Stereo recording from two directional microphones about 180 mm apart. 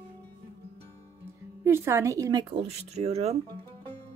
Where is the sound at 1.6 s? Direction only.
15° right (ahead or behind).